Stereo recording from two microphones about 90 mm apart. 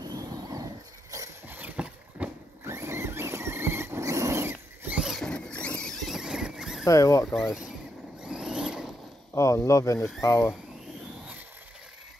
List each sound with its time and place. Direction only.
0.0 s a sound: 45° right (ahead or behind)
1.5 s boat: 20° right (ahead or behind)
2.6 s vehicle: 30° right (ahead or behind)
4.9 s rodents: 5° right (ahead or behind)
5.2 s a sound: 10° left (ahead or behind)
6.9 s speech: 35° left (ahead or behind)
7.3 s speech: 5° right (ahead or behind)
8.2 s vehicle: 10° right (ahead or behind)
9.3 s speech: 35° left (ahead or behind)